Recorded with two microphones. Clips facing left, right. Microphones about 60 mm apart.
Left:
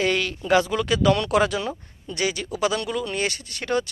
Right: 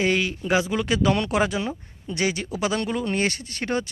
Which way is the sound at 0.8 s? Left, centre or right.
Right.